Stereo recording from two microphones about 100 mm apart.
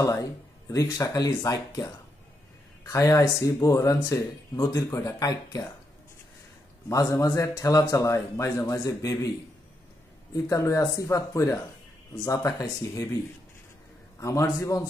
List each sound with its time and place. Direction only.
0.1 s speech: 35° left (ahead or behind)
2.9 s speech: 30° left (ahead or behind)
6.9 s speech: 35° left (ahead or behind)
10.3 s speech: 30° left (ahead or behind)
14.2 s speech: 30° left (ahead or behind)